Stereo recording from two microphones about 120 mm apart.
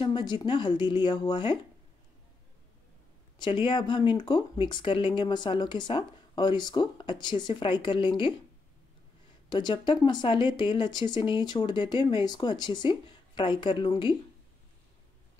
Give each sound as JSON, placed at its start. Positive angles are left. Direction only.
{"t": 0.0, "sound": "a sound", "side_deg": 40}
{"t": 0.5, "sound": "speech", "side_deg": 40}
{"t": 3.3, "sound": "speech", "side_deg": 40}
{"t": 9.5, "sound": "speech", "side_deg": 40}